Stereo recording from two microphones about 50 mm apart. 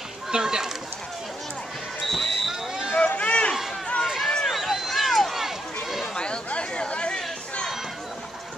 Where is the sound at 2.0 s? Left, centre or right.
Centre.